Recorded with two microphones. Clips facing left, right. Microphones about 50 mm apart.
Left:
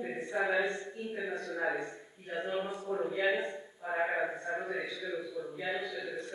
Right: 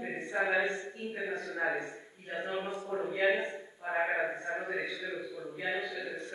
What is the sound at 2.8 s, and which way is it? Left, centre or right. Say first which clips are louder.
A man's voice: right 3 dB; centre.